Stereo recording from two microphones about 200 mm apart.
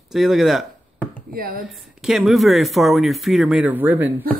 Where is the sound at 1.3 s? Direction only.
45° right (ahead or behind).